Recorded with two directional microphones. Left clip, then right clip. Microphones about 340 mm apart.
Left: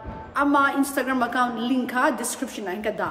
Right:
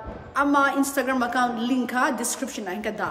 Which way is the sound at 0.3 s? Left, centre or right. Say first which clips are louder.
Even; centre.